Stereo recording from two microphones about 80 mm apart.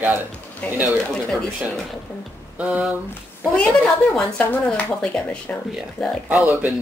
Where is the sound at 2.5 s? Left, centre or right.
Centre.